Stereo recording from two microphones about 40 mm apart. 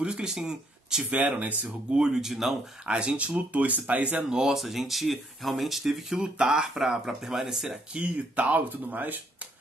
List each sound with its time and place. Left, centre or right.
0.0 s speech: right
1.4 s speech: right
1.9 s speech: right
2.8 s speech: right
4.2 s speech: centre
4.6 s speech: centre
7.9 s speech: right